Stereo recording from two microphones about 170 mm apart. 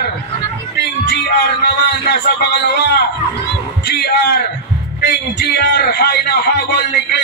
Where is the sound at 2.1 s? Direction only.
70° left (ahead or behind).